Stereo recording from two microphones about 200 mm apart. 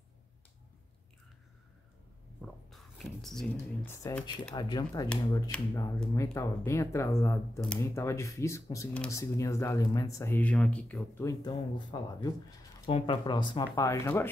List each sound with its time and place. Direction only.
2.7 s speech: centre (ahead or behind)
11.4 s speech: 20° left (ahead or behind)